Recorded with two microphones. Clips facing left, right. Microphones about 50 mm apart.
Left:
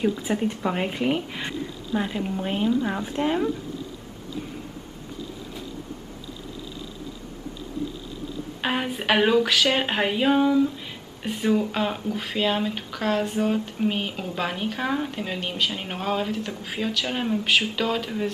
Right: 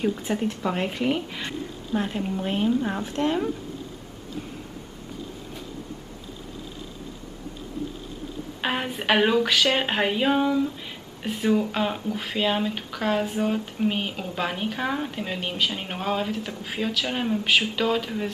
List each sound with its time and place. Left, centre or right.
0.2 s speech: centre
2.9 s speech: centre
8.5 s speech: centre